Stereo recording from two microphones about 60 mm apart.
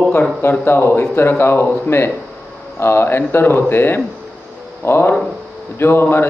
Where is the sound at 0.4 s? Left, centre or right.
Left.